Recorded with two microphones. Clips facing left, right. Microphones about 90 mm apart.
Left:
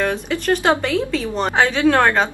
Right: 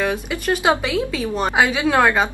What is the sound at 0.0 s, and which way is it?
Speech, 5° right (ahead or behind).